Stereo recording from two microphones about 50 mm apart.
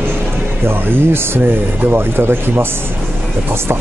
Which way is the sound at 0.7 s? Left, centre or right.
Right.